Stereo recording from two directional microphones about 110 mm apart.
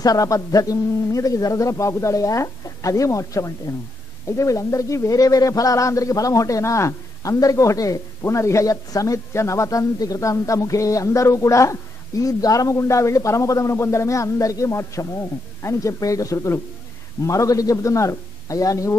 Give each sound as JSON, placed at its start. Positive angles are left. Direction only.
{"t": 0.0, "sound": "a man's voice", "side_deg": 35}